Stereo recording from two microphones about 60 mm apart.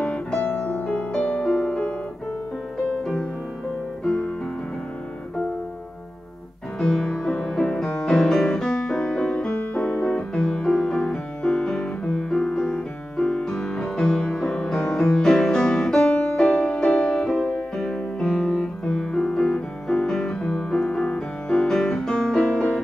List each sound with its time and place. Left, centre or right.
0.4 s music: left
1.6 s music: centre
6.8 s music: centre
9.5 s piano: left
16.9 s music: centre